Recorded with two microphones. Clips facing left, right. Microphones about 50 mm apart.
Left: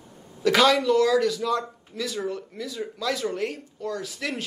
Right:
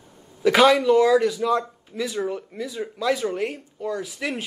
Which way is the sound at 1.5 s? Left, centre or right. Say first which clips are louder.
Right 4 dB; centre.